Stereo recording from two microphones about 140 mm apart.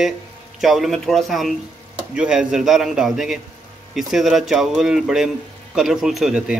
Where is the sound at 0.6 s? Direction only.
Centre (ahead or behind).